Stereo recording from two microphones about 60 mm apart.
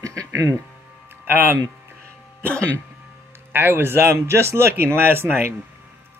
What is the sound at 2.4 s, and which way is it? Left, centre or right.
Speech, left.